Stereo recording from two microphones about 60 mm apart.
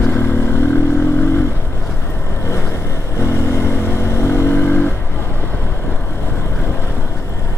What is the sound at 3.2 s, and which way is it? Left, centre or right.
Vehicle, left.